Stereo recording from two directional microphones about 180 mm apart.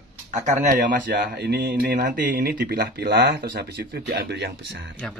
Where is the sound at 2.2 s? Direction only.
50° right (ahead or behind).